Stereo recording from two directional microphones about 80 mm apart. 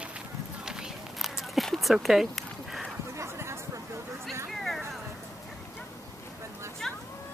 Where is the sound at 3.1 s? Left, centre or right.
Right.